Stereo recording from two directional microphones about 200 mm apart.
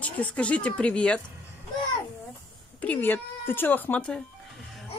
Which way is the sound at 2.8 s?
10° left (ahead or behind).